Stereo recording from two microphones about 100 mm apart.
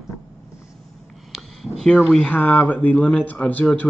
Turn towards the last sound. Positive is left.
turn(degrees=15)  # may be behind; listen again after turning